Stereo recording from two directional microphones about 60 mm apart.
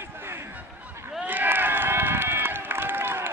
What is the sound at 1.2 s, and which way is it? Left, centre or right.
Run, right.